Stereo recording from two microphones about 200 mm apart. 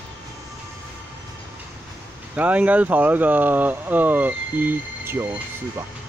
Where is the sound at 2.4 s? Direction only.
5° right (ahead or behind).